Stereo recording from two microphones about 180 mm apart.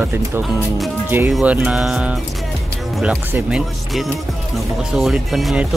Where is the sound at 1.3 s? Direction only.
5° right (ahead or behind).